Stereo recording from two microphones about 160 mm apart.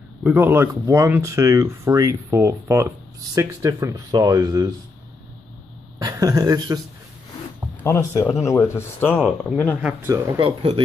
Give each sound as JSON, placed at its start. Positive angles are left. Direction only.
{"t": 0.2, "sound": "speech", "side_deg": -15}
{"t": 5.9, "sound": "speech", "side_deg": -20}
{"t": 7.8, "sound": "speech", "side_deg": 15}
{"t": 9.8, "sound": "speech", "side_deg": -10}
{"t": 10.4, "sound": "speech", "side_deg": -35}